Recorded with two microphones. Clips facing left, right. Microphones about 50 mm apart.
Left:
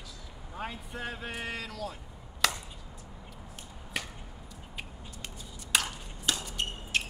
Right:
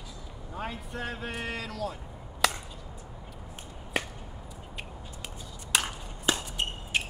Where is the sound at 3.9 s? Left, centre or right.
Right.